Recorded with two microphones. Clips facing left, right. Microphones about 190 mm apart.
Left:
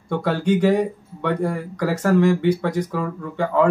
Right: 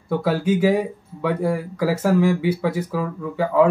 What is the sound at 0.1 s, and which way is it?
Speech, 5° right (ahead or behind).